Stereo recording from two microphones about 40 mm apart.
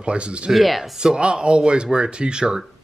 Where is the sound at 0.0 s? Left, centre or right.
Right.